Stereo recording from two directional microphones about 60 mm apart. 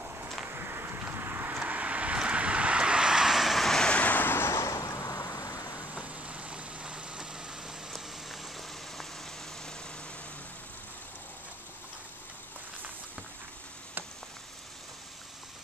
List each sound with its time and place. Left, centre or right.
0.5 s vehicle: right
1.6 s vehicle: right; by 3.9 s centre
3.9 s vehicle: left
5.9 s vehicle: right
7.9 s boiling: centre